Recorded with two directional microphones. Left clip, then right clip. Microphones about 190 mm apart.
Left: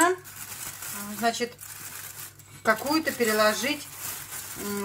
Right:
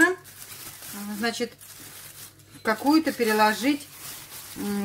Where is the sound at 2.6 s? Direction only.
50° right (ahead or behind).